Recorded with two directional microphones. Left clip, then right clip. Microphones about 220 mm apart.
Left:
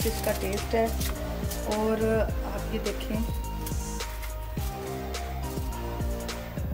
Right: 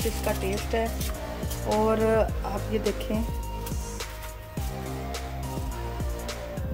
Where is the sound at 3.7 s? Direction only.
Centre (ahead or behind).